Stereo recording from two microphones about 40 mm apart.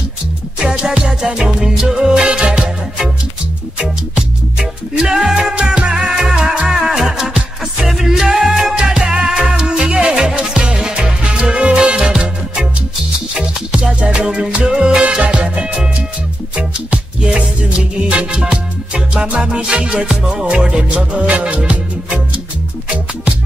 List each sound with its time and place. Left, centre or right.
0.6 s music: centre
4.6 s music: centre
5.5 s music: right
16.9 s music: right